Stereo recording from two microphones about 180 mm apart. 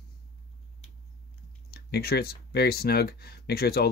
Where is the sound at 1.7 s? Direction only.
60° left (ahead or behind).